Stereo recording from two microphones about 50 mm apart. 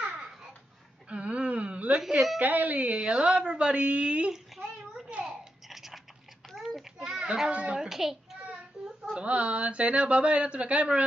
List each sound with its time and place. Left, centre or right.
1.0 s a sound: right
2.0 s speech: centre
2.4 s speech: right
5.2 s babbling: centre
6.5 s child singing: centre
7.5 s a child's voice: right
7.9 s a sound: centre
8.8 s baby cry: centre
9.1 s speech: right